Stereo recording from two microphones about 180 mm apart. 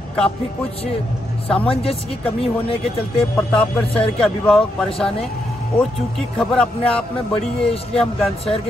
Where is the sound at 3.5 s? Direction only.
5° left (ahead or behind).